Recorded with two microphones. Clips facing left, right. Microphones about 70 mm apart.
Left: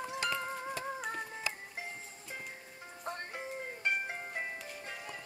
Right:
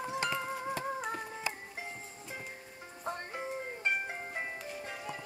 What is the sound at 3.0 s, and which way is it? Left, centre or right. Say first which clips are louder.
Music: right 3 dB; centre.